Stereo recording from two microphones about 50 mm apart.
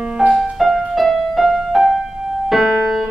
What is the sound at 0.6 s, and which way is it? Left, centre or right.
Music, centre.